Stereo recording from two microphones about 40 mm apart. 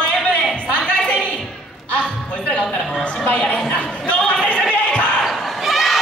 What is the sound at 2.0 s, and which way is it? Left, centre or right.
Speech, left.